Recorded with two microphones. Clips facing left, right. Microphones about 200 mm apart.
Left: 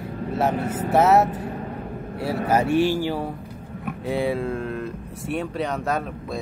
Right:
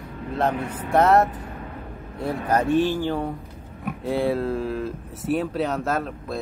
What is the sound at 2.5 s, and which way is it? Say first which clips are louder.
Speech: left 1 dB; 10° left (ahead or behind).